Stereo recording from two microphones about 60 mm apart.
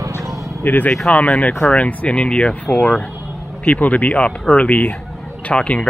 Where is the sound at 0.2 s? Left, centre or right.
Right.